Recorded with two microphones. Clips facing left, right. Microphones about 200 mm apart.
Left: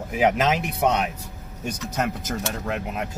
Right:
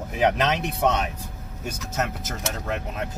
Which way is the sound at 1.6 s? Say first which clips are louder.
Left 2 dB; 15° left (ahead or behind).